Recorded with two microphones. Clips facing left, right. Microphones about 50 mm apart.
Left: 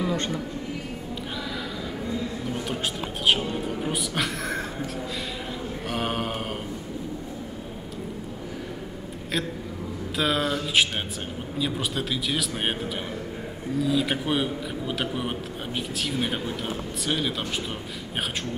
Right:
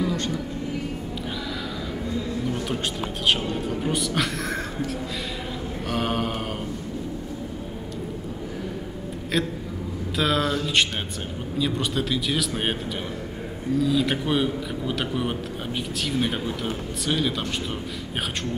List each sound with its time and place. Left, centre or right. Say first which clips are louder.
0.0 s a sound: right 1 dB; left
3.5 s a man's voice: right 2 dB; centre
5.9 s mantra: right 3 dB; centre
10.1 s a man's voice: right 2 dB; centre
13.7 s a man's voice: right 2 dB; centre